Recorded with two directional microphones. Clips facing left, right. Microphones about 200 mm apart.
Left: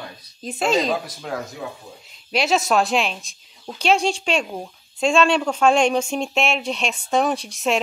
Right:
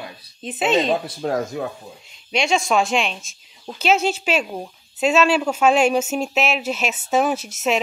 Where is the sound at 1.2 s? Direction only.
45° right (ahead or behind).